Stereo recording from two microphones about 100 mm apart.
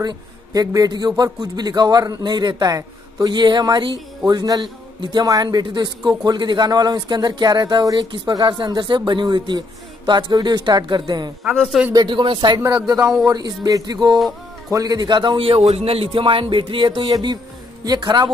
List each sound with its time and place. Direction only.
0.0 s a man's voice: 40° right (ahead or behind)
11.5 s a man's voice: centre (ahead or behind)
11.9 s a man's voice: 45° right (ahead or behind)
17.0 s a man's voice: 45° right (ahead or behind)